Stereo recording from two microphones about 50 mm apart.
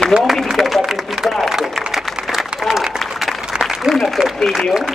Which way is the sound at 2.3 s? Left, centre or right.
Centre.